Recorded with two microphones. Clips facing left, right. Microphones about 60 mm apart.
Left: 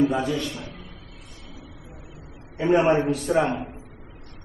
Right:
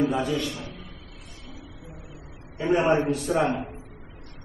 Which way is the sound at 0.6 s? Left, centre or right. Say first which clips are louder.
Left 1 dB; left.